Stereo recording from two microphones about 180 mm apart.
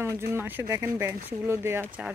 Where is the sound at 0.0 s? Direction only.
15° right (ahead or behind).